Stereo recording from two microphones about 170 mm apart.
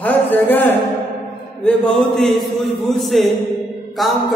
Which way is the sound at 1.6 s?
5° left (ahead or behind).